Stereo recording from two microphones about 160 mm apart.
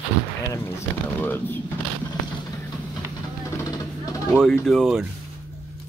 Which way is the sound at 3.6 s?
20° left (ahead or behind).